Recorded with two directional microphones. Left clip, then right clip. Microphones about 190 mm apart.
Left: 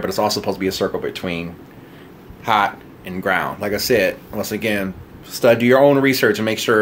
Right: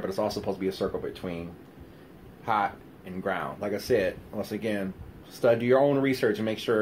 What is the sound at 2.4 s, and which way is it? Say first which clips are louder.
Speech: left 10 dB; 15° left (ahead or behind).